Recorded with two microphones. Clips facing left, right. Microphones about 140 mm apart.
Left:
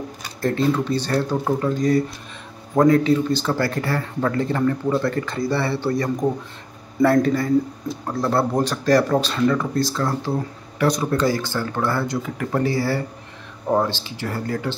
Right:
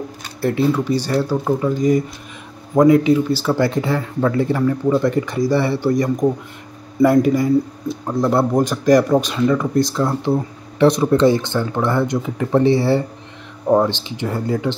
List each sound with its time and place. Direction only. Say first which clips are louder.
0.4 s speech: right 3 dB; 10° right (ahead or behind)
7.0 s speech: right 3 dB; 10° right (ahead or behind)